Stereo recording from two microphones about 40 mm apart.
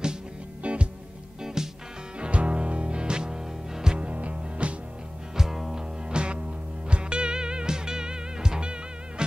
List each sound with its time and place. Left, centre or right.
0.6 s music: right
1.4 s music: centre
2.1 s music: right
4.0 s music: right
5.3 s music: centre
6.0 s music: right